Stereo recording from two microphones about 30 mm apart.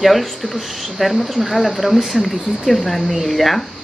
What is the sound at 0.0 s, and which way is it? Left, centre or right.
Speech, centre.